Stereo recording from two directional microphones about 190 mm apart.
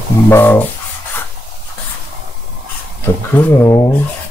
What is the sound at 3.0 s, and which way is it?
Speech, 15° left (ahead or behind).